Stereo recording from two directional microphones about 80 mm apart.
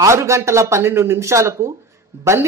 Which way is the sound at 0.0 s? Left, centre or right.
Right.